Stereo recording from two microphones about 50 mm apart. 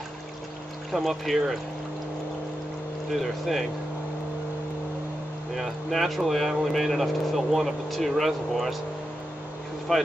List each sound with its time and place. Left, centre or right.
0.9 s speech: centre
3.1 s speech: centre
5.6 s speech: centre
9.9 s speech: centre